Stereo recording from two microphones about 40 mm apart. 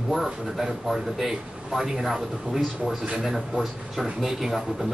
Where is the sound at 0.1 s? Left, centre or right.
Centre.